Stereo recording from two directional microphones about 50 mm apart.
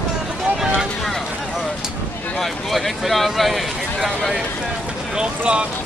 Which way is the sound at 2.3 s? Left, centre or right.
Centre.